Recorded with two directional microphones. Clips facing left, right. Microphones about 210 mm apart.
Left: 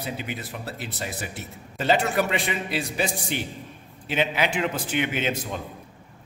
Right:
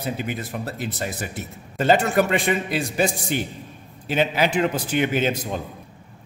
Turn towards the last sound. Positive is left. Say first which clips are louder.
# right 4 dB
turn(degrees=-40)  # may be behind; listen again after turning